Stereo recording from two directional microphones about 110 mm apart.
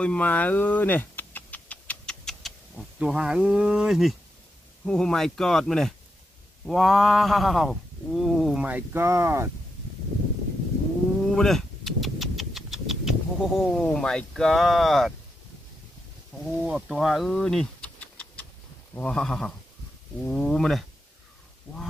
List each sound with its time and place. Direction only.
0.0 s a sound: 10° left (ahead or behind)
3.0 s speech: 10° right (ahead or behind)
8.6 s speech: 20° right (ahead or behind)
11.2 s vehicle: 5° left (ahead or behind)
16.4 s speech: 5° right (ahead or behind)